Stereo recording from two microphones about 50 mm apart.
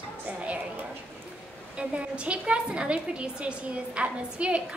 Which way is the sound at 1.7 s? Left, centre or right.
Right.